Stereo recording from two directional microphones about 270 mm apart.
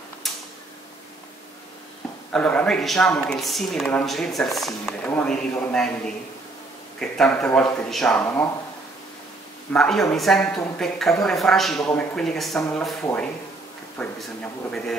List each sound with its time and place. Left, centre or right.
0.2 s a sound: centre
2.3 s speech: centre
9.7 s speech: centre